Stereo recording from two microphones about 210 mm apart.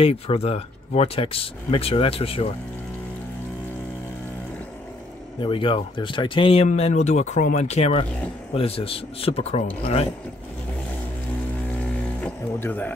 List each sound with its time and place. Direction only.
0.0 s speech: 30° left (ahead or behind)
5.4 s speech: 25° left (ahead or behind)
12.2 s music: 10° left (ahead or behind)